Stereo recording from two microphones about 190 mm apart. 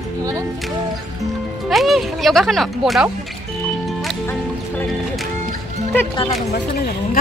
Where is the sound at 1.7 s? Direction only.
Centre (ahead or behind).